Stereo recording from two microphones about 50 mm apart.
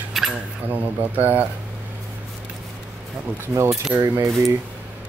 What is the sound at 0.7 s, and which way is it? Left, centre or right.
Speech, right.